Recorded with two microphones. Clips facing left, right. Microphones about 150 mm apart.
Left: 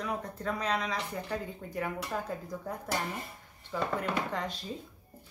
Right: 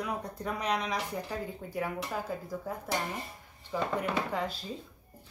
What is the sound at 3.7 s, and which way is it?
Speech, 15° right (ahead or behind).